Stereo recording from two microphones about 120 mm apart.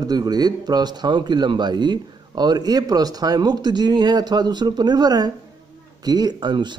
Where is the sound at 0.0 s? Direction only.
35° right (ahead or behind).